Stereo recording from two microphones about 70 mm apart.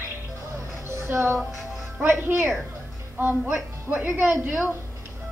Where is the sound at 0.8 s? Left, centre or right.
Right.